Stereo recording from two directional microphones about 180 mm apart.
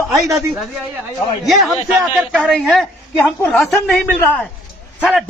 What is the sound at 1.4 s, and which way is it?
A man's voice, centre (ahead or behind).